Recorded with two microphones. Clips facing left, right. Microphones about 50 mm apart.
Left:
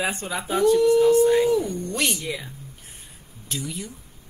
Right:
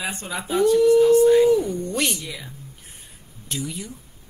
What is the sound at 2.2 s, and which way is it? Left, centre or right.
Speech, left.